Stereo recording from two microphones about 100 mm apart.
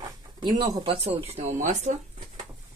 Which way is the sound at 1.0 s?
90° right.